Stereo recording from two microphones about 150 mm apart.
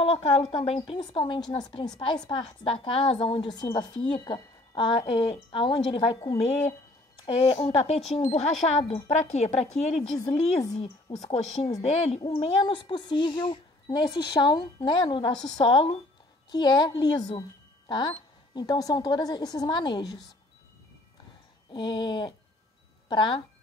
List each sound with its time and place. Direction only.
0.0 s a woman's voice: 40° left (ahead or behind)
7.4 s a woman's voice: 40° left (ahead or behind)
10.1 s a woman's voice: 25° left (ahead or behind)
10.8 s a woman's voice: 40° left (ahead or behind)
21.7 s a woman's voice: 30° left (ahead or behind)